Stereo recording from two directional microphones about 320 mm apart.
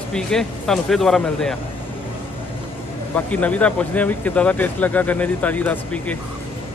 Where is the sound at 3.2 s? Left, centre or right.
Centre.